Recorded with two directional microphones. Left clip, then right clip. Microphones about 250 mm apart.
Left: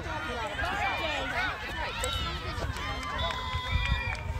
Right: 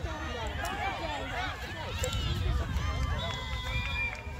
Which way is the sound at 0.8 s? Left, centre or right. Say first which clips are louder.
Left 4 dB; left.